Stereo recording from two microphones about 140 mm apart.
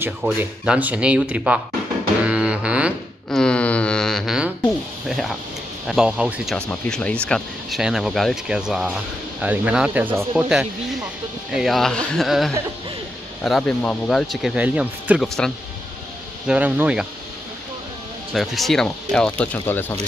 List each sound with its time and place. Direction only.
0.0 s speech: 10° right (ahead or behind)
2.2 s music: 10° right (ahead or behind)
3.3 s a sound: 5° left (ahead or behind)
5.9 s speech: 5° right (ahead or behind)
6.7 s speech: 10° left (ahead or behind)
16.4 s speech: 10° right (ahead or behind)
18.3 s speech: centre (ahead or behind)